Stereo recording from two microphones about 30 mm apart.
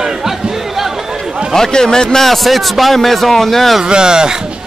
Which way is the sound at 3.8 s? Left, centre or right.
Right.